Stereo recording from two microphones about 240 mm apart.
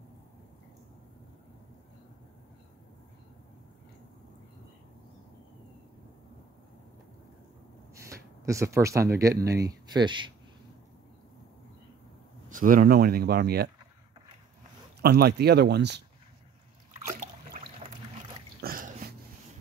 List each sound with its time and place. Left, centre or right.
7.9 s speech: centre
12.4 s speech: right
15.0 s speech: right
17.6 s boat: right
18.6 s a sound: right